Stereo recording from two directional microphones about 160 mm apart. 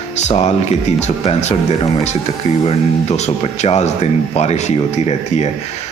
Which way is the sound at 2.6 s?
45° left (ahead or behind).